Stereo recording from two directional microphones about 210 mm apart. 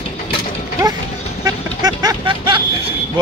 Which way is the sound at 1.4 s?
20° right (ahead or behind).